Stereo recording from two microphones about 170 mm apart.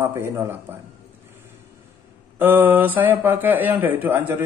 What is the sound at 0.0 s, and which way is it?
Speech, 15° right (ahead or behind).